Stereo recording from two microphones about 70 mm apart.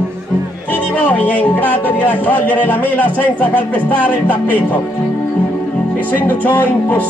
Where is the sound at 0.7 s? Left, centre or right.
Left.